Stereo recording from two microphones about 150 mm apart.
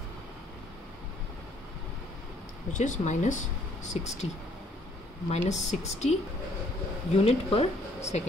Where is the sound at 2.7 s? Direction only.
55° left (ahead or behind).